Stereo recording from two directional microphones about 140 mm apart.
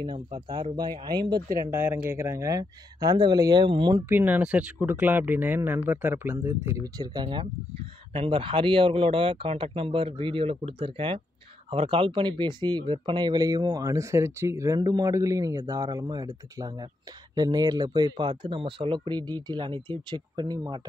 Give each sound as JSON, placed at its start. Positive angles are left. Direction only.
{"t": 0.0, "sound": "speech", "side_deg": -35}
{"t": 4.1, "sound": "speech", "side_deg": -15}
{"t": 7.0, "sound": "speech", "side_deg": -30}